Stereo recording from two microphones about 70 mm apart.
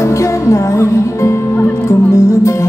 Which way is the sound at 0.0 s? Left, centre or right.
Left.